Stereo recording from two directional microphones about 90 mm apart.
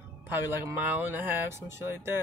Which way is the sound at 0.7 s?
20° right (ahead or behind).